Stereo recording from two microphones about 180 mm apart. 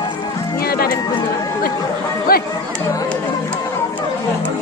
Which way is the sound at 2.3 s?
55° left (ahead or behind).